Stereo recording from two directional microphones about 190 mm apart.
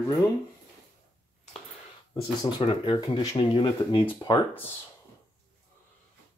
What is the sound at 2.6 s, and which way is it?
Speech, 25° left (ahead or behind).